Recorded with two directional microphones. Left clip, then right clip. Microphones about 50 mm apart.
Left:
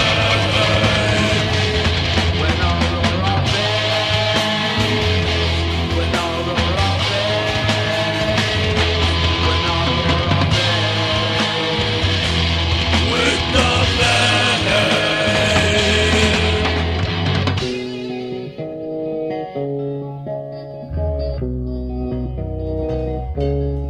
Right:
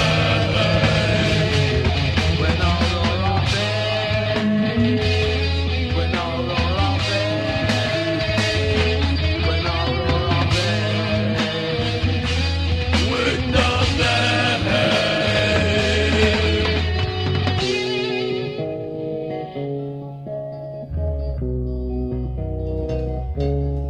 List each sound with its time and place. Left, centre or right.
0.0 s music: left
2.4 s music: left
13.1 s music: left